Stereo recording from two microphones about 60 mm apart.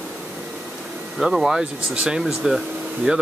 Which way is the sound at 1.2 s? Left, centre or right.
Centre.